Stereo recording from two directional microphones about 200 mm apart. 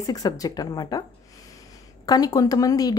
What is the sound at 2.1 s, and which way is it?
Speech, 20° left (ahead or behind).